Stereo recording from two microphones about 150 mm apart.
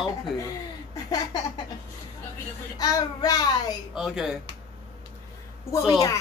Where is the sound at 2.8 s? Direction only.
25° left (ahead or behind).